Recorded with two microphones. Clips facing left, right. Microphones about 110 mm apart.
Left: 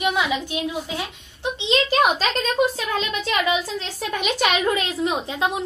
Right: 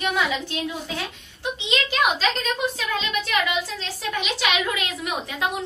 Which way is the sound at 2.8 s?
30° left (ahead or behind).